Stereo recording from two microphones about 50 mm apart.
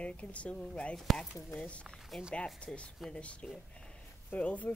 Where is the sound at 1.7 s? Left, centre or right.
Left.